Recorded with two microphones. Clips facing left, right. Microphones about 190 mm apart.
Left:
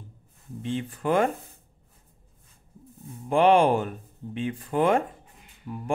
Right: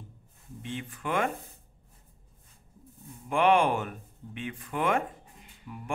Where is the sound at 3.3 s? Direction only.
30° left (ahead or behind).